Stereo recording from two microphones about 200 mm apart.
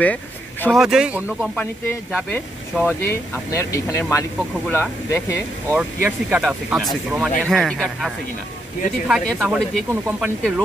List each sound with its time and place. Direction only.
0.0 s speech: 5° left (ahead or behind)
1.6 s speech: 10° left (ahead or behind)
5.7 s speech: 10° right (ahead or behind)